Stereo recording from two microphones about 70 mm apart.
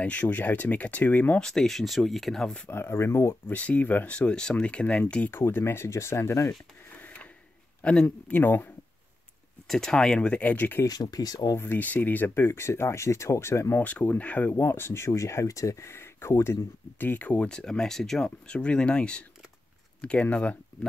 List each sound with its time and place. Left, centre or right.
0.0 s speech: left
1.4 s speech: centre
2.7 s speech: left
3.4 s speech: left
5.3 s speech: left
7.0 s a sound: left
7.8 s speech: centre
8.4 s speech: left
9.7 s speech: centre; by 10.8 s left
10.9 s speech: left
11.5 s speech: left
13.8 s speech: left
14.5 s speech: left
17.0 s speech: left